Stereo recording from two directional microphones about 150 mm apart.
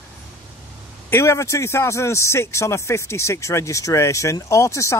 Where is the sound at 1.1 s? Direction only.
20° left (ahead or behind).